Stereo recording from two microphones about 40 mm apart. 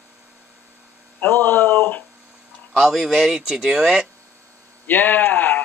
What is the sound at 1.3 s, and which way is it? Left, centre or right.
Speech, left.